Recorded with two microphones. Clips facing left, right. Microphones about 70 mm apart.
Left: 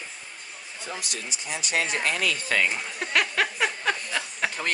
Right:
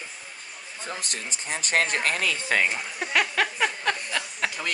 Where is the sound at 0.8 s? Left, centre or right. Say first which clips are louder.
Right 1 dB; right.